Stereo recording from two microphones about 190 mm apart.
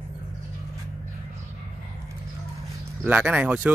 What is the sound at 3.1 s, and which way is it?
Speech, 5° right (ahead or behind).